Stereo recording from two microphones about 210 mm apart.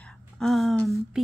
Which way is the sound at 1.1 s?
5° right (ahead or behind).